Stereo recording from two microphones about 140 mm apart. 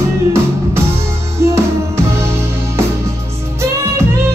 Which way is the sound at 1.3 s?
20° right (ahead or behind).